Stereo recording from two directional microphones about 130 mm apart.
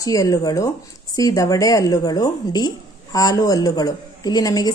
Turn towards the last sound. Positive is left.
turn(degrees=30)  # may be behind; listen again after turning